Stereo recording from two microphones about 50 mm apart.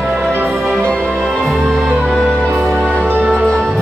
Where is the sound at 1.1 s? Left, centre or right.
Centre.